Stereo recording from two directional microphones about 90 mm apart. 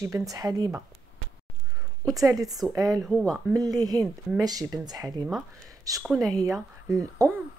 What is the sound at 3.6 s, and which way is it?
Speech, 45° right (ahead or behind).